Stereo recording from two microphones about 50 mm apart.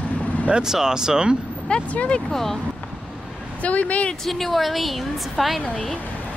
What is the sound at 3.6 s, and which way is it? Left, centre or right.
Speech, left.